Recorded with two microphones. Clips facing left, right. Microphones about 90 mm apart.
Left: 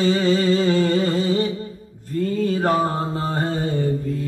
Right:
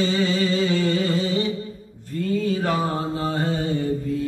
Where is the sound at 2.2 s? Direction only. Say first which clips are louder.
Left 2 dB; 45° left (ahead or behind).